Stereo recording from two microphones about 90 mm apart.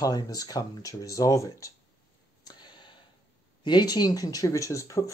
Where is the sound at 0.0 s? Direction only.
45° left (ahead or behind).